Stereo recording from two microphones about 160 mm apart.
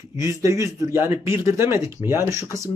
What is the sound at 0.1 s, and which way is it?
Speech, 20° right (ahead or behind).